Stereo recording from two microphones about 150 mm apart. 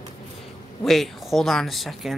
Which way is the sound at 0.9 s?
Centre (ahead or behind).